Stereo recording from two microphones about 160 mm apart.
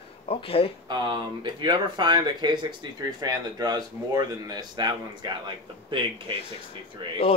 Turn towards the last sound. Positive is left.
turn(degrees=-30)  # may be behind; listen again after turning